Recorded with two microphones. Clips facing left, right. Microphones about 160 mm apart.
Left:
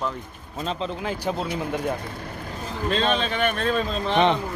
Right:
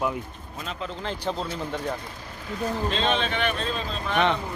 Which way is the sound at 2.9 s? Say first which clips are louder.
Left 7 dB; 45° left (ahead or behind).